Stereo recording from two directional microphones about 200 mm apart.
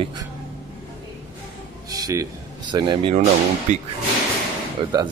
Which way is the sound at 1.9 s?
20° right (ahead or behind).